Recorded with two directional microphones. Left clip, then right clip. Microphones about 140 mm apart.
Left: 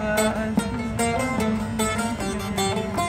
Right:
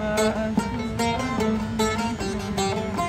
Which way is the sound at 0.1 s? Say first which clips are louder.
Even; 25° left (ahead or behind).